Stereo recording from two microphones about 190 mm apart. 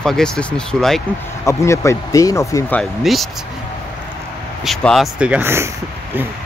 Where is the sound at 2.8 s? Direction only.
Centre (ahead or behind).